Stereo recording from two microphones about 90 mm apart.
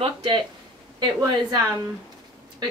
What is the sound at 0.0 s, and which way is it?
Speech, 90° right.